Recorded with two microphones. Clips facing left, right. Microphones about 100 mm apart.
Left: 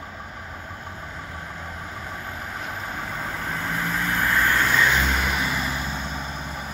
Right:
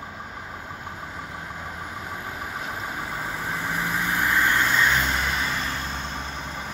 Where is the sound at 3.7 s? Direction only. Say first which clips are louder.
Even; 15° right (ahead or behind).